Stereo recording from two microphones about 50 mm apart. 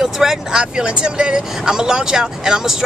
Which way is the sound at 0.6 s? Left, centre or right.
Right.